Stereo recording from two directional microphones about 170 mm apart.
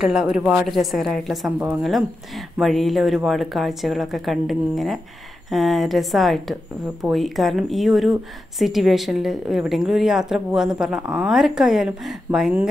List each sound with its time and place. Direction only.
0.0 s speech: centre (ahead or behind)